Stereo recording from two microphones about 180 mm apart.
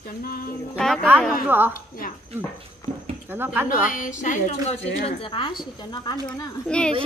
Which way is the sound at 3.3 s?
10° right (ahead or behind).